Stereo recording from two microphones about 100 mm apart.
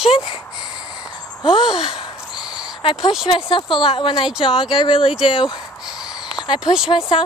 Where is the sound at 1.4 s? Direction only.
60° left (ahead or behind).